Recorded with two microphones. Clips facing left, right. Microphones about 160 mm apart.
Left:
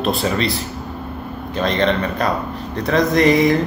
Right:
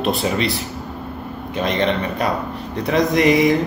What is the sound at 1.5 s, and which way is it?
Speech, 10° right (ahead or behind).